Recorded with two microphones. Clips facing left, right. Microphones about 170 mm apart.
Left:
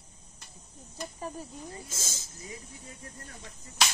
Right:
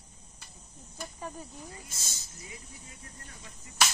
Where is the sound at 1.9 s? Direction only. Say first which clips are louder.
Left 5 dB; 90° left.